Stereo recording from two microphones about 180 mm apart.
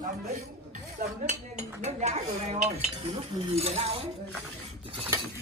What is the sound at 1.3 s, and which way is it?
Dishes, 40° right (ahead or behind).